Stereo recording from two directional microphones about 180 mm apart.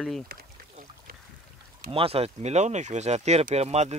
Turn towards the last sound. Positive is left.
turn(degrees=-35)  # may be behind; listen again after turning